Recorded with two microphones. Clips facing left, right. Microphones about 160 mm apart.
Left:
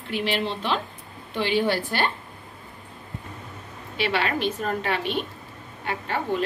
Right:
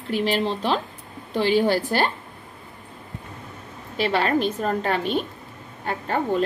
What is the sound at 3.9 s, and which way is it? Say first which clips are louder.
A woman's voice: right 4 dB; 40° right (ahead or behind).